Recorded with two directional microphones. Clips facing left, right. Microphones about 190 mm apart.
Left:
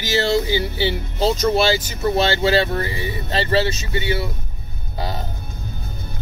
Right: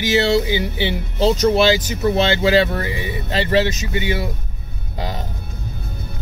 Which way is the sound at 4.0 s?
30° left (ahead or behind).